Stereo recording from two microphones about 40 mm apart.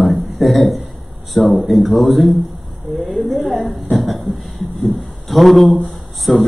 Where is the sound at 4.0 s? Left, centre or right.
Centre.